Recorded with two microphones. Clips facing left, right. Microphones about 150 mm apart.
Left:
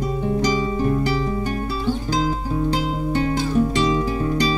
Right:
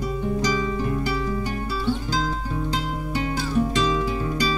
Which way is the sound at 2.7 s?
40° left (ahead or behind).